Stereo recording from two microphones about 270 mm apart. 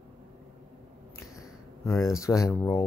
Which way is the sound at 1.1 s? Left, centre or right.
Centre.